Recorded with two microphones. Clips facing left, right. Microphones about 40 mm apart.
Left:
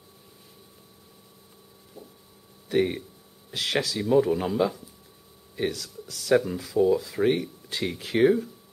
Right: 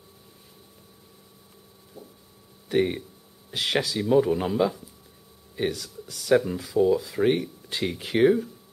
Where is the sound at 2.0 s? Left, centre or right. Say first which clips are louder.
Right 1 dB; centre.